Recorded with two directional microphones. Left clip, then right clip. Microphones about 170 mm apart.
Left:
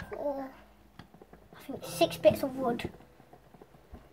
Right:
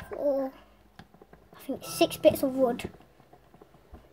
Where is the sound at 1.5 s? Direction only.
50° right (ahead or behind).